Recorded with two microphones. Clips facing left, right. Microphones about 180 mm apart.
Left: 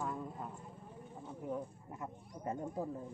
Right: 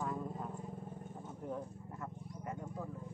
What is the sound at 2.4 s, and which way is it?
Speech, 30° left (ahead or behind).